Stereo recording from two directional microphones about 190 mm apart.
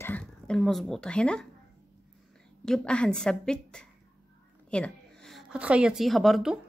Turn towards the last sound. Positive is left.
turn(degrees=0)  # may be behind; listen again after turning